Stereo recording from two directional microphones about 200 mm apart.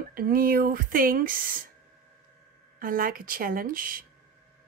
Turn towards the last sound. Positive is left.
turn(degrees=-45)  # may be behind; listen again after turning